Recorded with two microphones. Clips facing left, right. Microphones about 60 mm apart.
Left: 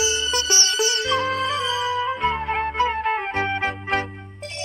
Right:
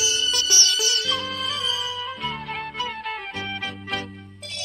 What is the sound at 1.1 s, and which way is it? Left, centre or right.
Music, left.